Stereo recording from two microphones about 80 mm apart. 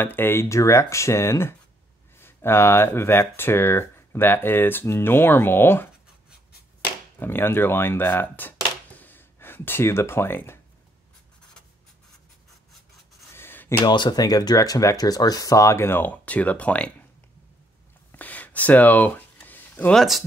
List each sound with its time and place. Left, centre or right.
0.0 s speech: left
7.2 s speech: left
13.3 s a sound: left
13.8 s speech: left
14.2 s speech: left; by 16.9 s centre
18.1 s a sound: left
19.9 s speech: centre